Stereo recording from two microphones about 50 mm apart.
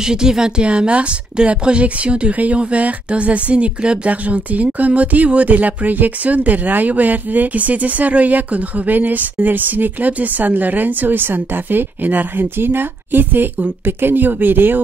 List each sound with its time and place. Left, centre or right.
0.0 s speech: centre; by 12.4 s right
12.5 s speech: right